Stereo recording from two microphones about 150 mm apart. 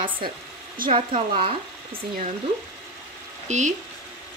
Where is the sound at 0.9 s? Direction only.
35° right (ahead or behind).